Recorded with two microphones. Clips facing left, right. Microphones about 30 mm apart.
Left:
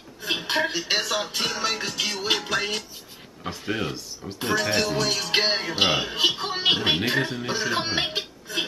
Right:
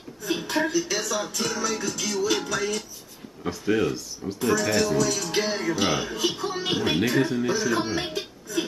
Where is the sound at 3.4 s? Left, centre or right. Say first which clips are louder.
Right 5 dB; left.